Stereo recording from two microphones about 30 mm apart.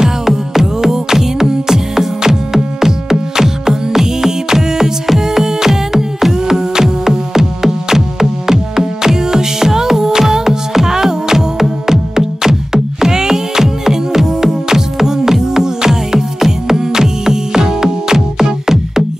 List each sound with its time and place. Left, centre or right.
0.0 s music: centre
6.7 s music: centre